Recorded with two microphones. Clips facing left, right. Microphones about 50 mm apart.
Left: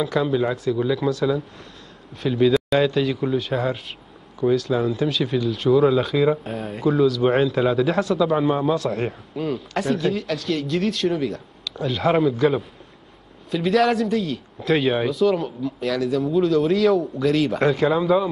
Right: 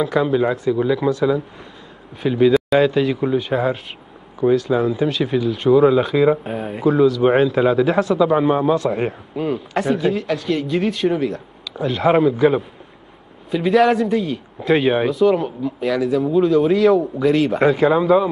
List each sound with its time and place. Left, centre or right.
0.0 s a man's voice: centre